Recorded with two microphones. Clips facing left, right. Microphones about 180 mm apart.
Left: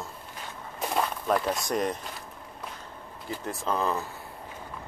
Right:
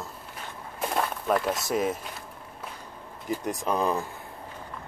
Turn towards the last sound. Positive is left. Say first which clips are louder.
# right 2 dB
turn(degrees=-15)  # may be behind; listen again after turning